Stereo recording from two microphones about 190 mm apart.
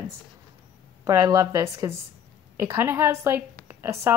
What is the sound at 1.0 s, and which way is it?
Speech, 15° right (ahead or behind).